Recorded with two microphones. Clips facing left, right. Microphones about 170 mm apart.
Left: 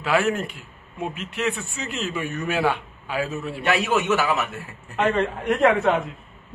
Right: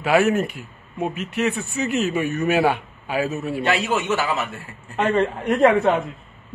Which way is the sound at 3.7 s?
15° left (ahead or behind).